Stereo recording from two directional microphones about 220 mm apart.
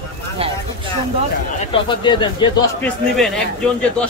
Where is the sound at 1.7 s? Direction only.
20° left (ahead or behind).